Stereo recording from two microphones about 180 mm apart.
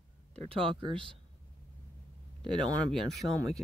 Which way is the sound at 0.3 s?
30° right (ahead or behind).